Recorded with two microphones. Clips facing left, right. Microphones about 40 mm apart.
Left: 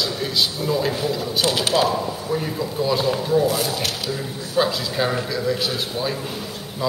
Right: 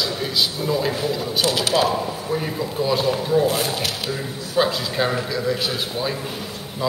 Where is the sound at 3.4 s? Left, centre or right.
Right.